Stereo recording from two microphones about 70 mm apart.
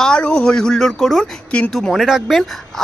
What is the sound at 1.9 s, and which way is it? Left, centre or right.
Speech, centre.